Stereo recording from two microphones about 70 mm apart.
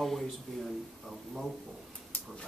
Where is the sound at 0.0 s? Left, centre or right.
Centre.